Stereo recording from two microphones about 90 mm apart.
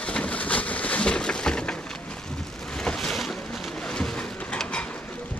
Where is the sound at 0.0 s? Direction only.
10° left (ahead or behind).